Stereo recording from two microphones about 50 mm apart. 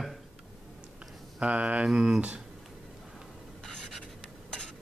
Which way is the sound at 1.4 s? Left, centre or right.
Right.